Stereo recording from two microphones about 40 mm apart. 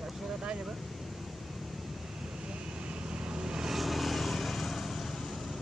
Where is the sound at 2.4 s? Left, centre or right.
Right.